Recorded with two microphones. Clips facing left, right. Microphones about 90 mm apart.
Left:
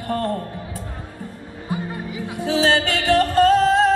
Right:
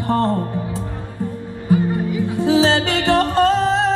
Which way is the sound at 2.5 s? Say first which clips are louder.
Right 2 dB; 20° right (ahead or behind).